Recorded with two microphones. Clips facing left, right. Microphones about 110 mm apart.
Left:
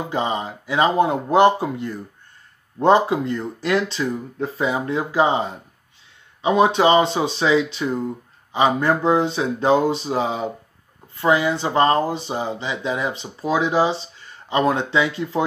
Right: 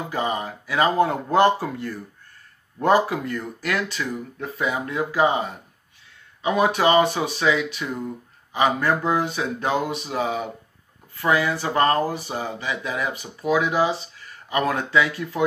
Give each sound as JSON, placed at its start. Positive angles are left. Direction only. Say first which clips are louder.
{"t": 0.1, "sound": "speech", "louder": "left 1 dB", "side_deg": 25}